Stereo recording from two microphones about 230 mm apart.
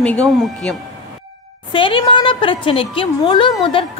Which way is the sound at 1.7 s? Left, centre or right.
Left.